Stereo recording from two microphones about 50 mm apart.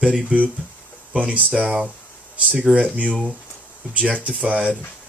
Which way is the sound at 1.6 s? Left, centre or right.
Centre.